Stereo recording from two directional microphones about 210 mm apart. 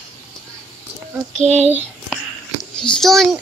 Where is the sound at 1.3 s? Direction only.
30° right (ahead or behind).